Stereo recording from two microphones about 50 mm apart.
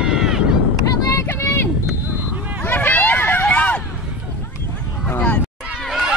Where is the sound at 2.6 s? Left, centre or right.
Left.